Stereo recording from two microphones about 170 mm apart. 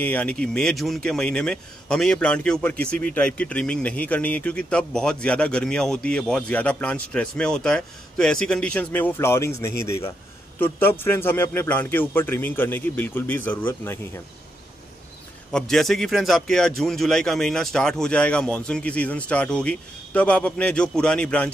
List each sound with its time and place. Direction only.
0.0 s speech: 10° left (ahead or behind)
15.5 s speech: centre (ahead or behind)